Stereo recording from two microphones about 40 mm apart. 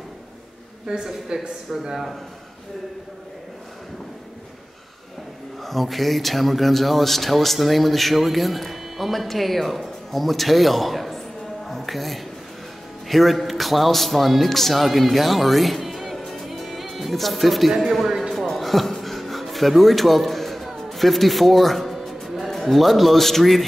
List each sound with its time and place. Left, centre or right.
0.9 s speech: centre
5.6 s speech: centre
11.6 s music: centre
13.1 s a man's voice: centre
18.3 s a sound: centre
21.9 s music: centre
22.4 s a man's voice: centre